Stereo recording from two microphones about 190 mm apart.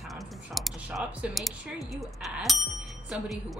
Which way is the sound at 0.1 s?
Centre (ahead or behind).